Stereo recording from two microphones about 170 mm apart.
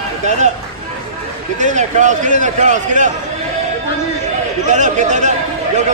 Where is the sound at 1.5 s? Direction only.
45° right (ahead or behind).